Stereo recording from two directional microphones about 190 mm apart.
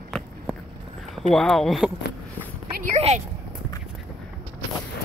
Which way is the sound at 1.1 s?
Centre (ahead or behind).